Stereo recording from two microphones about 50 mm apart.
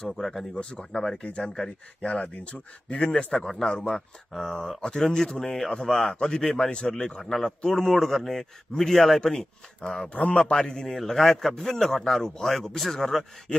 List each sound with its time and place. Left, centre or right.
0.0 s a man's voice: centre
0.6 s a man's voice: centre
6.7 s a man's voice: centre
7.2 s a man's voice: centre
10.0 s a man's voice: left
10.6 s a man's voice: centre